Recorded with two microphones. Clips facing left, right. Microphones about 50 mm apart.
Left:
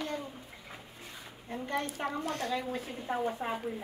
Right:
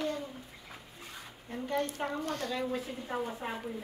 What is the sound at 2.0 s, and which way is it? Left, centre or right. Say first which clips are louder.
Speech: left 1 dB; centre.